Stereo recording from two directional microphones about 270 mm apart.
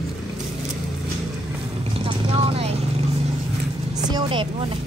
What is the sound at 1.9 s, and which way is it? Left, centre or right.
Vehicle, centre.